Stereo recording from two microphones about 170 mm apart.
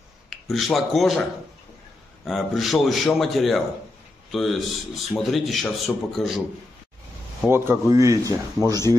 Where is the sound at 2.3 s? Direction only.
Centre (ahead or behind).